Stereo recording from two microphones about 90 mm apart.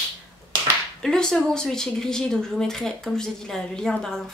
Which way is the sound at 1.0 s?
5° left (ahead or behind).